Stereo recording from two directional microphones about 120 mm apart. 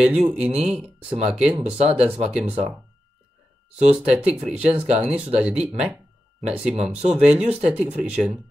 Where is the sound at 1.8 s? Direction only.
60° right (ahead or behind).